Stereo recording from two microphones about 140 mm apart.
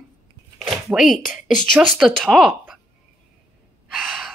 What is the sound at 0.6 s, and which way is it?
A woman's voice, centre (ahead or behind).